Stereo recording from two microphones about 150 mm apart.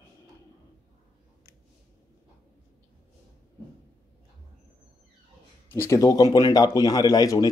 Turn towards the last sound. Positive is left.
turn(degrees=25)  # may be behind; listen again after turning